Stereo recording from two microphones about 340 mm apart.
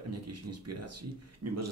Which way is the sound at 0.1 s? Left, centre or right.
Right.